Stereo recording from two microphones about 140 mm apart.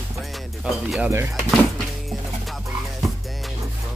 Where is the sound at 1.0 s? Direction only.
15° right (ahead or behind).